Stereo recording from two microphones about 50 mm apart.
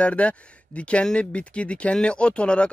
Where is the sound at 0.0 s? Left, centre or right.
Left.